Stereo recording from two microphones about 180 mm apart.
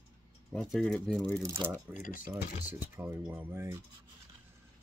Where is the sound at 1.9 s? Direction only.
50° left (ahead or behind).